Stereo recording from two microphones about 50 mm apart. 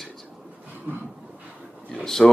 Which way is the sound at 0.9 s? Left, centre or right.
Right.